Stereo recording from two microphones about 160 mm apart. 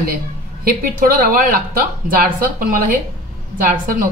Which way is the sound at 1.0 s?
65° right (ahead or behind).